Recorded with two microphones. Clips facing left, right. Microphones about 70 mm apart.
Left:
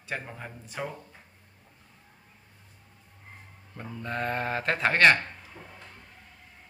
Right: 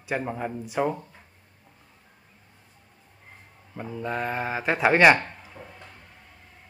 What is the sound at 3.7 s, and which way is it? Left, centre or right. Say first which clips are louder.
Speech: right 4 dB; centre.